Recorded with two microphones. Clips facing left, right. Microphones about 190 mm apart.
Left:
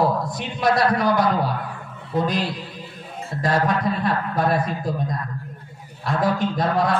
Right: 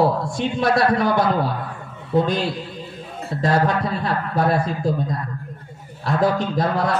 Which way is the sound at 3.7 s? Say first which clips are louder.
Left 1 dB; 25° right (ahead or behind).